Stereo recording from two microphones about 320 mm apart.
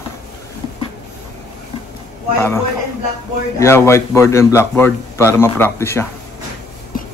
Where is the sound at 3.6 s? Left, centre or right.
Centre.